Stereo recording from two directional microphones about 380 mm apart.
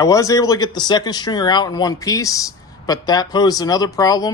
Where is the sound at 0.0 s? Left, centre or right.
Centre.